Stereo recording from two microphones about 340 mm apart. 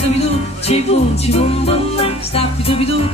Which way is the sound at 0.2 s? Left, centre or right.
Centre.